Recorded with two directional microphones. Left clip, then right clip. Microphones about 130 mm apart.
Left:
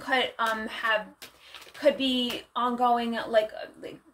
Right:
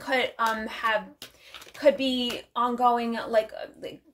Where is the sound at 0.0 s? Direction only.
40° right (ahead or behind).